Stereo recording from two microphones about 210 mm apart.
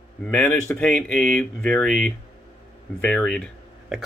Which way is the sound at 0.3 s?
5° left (ahead or behind).